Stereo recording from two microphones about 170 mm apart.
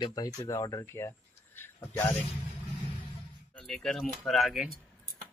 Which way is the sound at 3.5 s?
Centre (ahead or behind).